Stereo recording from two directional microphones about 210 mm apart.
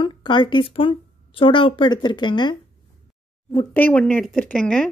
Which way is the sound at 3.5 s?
10° left (ahead or behind).